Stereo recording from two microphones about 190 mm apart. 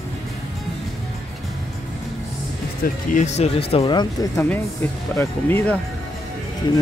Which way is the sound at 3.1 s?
35° left (ahead or behind).